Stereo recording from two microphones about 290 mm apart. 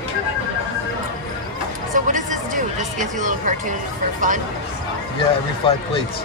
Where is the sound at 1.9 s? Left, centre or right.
Right.